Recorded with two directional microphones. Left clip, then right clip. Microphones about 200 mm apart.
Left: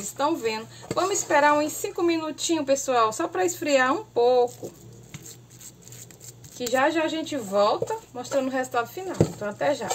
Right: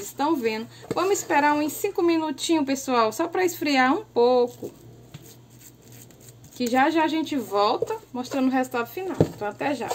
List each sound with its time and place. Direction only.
0.2 s a woman's voice: 45° right (ahead or behind)
6.7 s a woman's voice: 45° right (ahead or behind)